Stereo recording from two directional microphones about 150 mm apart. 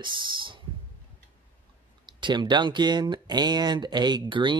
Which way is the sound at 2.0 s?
30° right (ahead or behind).